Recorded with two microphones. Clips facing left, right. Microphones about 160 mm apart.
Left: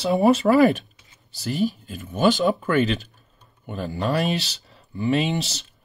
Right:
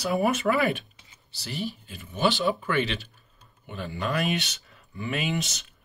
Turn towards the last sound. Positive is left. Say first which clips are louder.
# left 6 dB
turn(degrees=30)  # may be behind; listen again after turning